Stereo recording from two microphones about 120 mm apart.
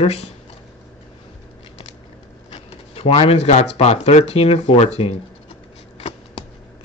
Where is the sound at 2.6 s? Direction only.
55° left (ahead or behind).